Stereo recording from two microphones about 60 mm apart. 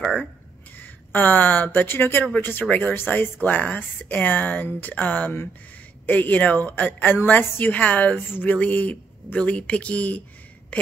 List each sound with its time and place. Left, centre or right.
0.7 s speech: left